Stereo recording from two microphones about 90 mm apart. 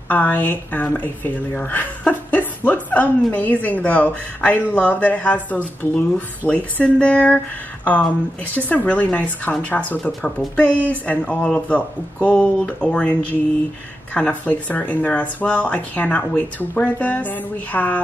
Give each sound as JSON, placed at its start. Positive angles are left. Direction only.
{"t": 0.1, "sound": "speech", "side_deg": 20}
{"t": 8.5, "sound": "speech", "side_deg": 15}